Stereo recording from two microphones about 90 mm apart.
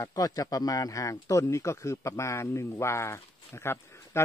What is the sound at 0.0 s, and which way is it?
Speech, 40° left (ahead or behind).